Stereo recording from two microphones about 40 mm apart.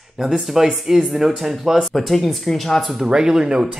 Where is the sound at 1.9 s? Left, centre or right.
Centre.